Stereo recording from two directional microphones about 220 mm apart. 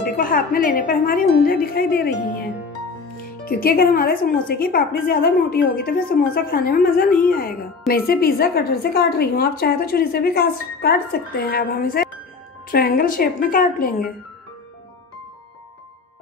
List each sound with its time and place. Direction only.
0.0 s a woman's voice: 40° left (ahead or behind)
3.4 s a woman's voice: 45° left (ahead or behind)